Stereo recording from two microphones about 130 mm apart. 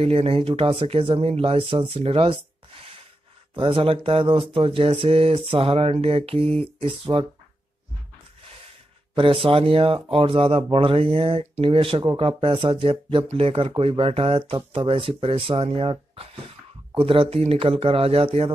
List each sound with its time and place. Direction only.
0.0 s speech: 50° right (ahead or behind)
3.5 s speech: 40° right (ahead or behind)
9.1 s speech: 40° right (ahead or behind)